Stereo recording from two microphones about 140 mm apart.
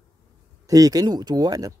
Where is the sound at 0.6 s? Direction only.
25° right (ahead or behind).